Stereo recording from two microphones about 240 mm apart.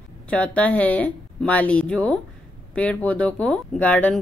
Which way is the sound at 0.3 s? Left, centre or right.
Centre.